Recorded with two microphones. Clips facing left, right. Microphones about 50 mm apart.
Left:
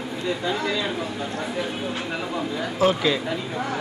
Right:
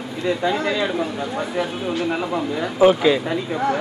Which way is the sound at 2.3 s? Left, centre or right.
Right.